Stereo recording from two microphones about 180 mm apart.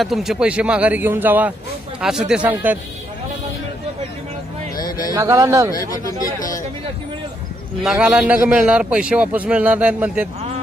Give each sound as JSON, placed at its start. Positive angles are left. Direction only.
{"t": 0.0, "sound": "a man's voice", "side_deg": 0}
{"t": 4.8, "sound": "a sound", "side_deg": 20}
{"t": 5.1, "sound": "a man's voice", "side_deg": -15}
{"t": 5.7, "sound": "speech", "side_deg": 20}
{"t": 7.8, "sound": "a man's voice", "side_deg": -5}